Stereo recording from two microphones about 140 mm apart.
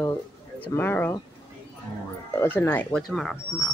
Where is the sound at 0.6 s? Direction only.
15° left (ahead or behind).